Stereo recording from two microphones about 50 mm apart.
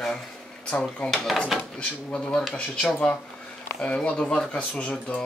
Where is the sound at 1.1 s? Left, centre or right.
Centre.